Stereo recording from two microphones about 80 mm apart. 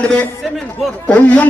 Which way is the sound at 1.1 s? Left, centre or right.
Centre.